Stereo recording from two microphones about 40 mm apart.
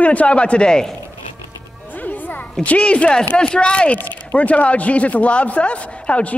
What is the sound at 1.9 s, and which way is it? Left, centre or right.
Music, left.